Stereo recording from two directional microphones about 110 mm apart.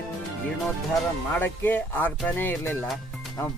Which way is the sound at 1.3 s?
20° left (ahead or behind).